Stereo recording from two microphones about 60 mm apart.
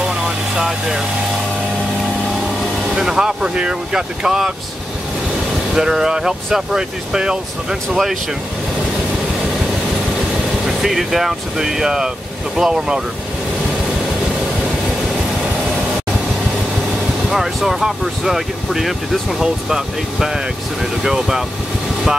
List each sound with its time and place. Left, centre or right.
0.6 s vehicle: centre
2.9 s speech: centre
5.8 s speech: centre
10.8 s speech: centre
17.3 s speech: centre